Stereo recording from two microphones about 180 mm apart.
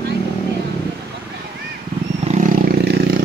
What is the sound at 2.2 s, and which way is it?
Roar, 35° right (ahead or behind).